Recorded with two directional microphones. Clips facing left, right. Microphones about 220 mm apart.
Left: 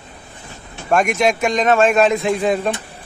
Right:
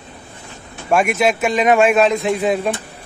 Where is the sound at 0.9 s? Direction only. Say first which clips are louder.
Even; 5° right (ahead or behind).